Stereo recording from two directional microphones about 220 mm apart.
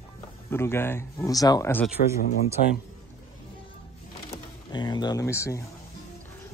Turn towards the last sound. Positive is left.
turn(degrees=15)  # may be behind; listen again after turning